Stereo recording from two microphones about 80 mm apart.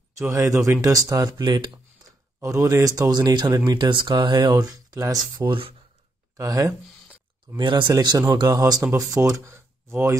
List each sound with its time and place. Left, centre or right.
0.3 s speech: right
1.4 s speech: right
2.4 s speech: right
3.6 s speech: right
5.4 s speech: right
7.5 s speech: right
8.0 s speech: right
8.5 s speech: right